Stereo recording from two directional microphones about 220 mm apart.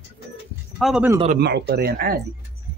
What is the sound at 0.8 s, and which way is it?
Speech, 5° right (ahead or behind).